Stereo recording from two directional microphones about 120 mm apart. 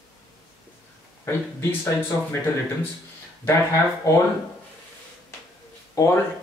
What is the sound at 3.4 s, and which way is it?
Speech, 25° left (ahead or behind).